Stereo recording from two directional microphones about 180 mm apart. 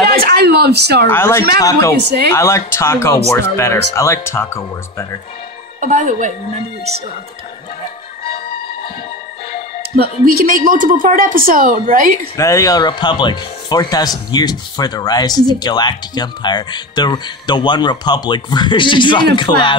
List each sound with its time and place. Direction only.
0.1 s a sound: 55° right (ahead or behind)
1.0 s speech: 15° left (ahead or behind)
5.8 s a woman's voice: 45° right (ahead or behind)
10.2 s a woman's voice: 50° right (ahead or behind)
12.4 s speech: 20° left (ahead or behind)